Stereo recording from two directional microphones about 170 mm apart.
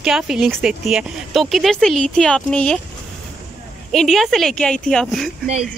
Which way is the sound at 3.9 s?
Centre (ahead or behind).